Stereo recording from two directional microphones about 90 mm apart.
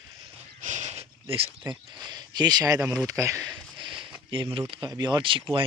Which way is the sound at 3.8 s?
70° right (ahead or behind).